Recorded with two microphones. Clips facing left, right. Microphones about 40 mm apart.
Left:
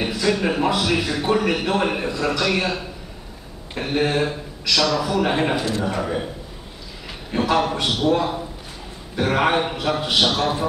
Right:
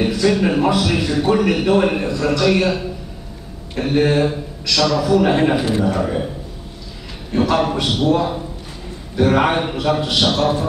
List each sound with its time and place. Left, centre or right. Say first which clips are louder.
0.0 s a man's voice: right 5 dB; centre
5.6 s a man's voice: right 5 dB; centre
5.9 s a man's voice: right 4 dB; centre
7.3 s a man's voice: right 3 dB; centre